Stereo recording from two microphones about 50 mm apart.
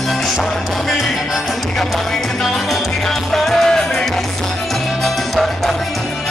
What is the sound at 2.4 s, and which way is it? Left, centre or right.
Music, centre.